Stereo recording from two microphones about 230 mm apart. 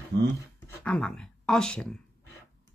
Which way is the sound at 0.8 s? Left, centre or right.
Centre.